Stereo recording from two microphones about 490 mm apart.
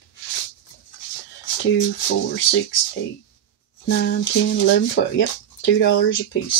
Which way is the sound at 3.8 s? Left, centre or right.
Left.